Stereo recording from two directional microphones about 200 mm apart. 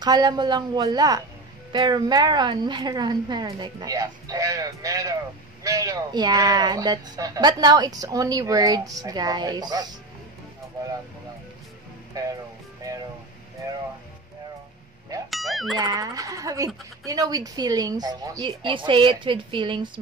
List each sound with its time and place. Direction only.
0.0 s speech: 20° right (ahead or behind)
12.1 s speech: 20° right (ahead or behind)
15.2 s music: centre (ahead or behind)
15.8 s speech: 20° right (ahead or behind)